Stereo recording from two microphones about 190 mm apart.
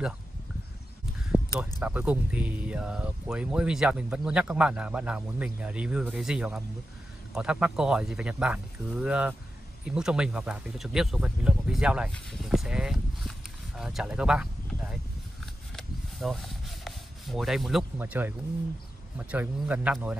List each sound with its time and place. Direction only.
1.8 s speech: 10° right (ahead or behind)
15.4 s rub: centre (ahead or behind)
19.1 s speech: 10° right (ahead or behind)